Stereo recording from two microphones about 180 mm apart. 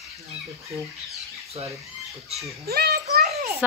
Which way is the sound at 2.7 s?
60° right (ahead or behind).